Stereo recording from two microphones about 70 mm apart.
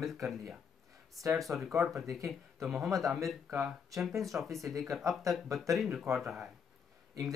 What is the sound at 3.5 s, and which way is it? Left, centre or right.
Speech, right.